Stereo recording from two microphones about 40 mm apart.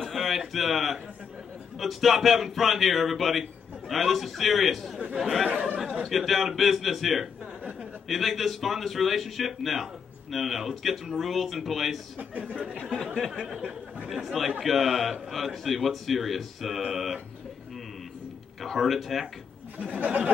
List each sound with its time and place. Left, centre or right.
0.0 s a man's voice: centre
5.5 s speech: right
6.0 s a man's voice: centre
12.2 s speech: right
12.9 s speech: centre
14.0 s a man's voice: centre
18.6 s a man's voice: centre